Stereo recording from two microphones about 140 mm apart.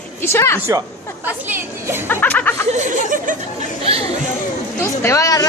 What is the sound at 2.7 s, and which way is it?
Speech, 65° right (ahead or behind).